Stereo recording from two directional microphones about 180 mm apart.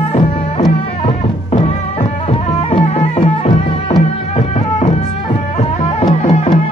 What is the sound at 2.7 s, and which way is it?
Music, 30° left (ahead or behind).